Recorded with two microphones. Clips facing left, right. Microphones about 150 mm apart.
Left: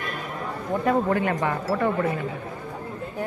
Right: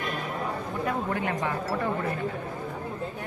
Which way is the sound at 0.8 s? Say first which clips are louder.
Left 7 dB; 70° left (ahead or behind).